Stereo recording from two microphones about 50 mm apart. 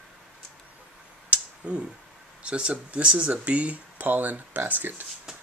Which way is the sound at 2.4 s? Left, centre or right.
Right.